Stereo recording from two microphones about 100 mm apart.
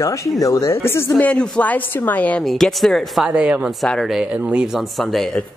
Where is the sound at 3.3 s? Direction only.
10° right (ahead or behind).